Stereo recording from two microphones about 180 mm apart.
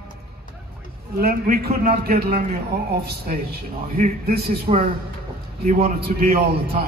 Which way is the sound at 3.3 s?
45° right (ahead or behind).